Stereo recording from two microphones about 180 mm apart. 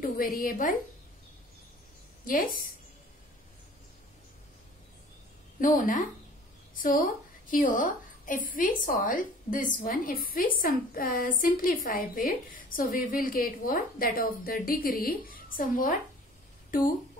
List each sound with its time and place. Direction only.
0.0 s a woman's voice: 50° left (ahead or behind)
2.2 s a woman's voice: 50° left (ahead or behind)
5.6 s a woman's voice: 50° left (ahead or behind)